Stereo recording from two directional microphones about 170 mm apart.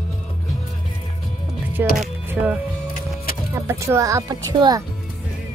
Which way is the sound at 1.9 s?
5° right (ahead or behind).